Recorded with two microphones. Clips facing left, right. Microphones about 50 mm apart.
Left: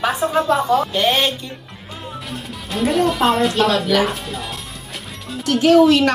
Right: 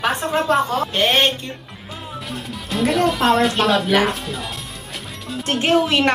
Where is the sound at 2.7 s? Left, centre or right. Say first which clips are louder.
Left 1 dB; centre.